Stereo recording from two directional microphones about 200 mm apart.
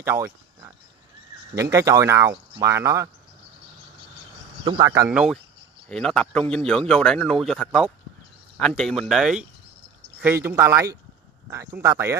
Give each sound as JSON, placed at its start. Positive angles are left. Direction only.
{"t": 0.0, "sound": "a sound", "side_deg": -10}
{"t": 1.5, "sound": "speech", "side_deg": -15}
{"t": 4.6, "sound": "speech", "side_deg": -20}
{"t": 5.1, "sound": "speech", "side_deg": -5}